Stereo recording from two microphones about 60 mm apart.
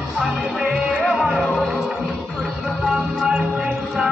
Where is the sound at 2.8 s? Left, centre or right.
Centre.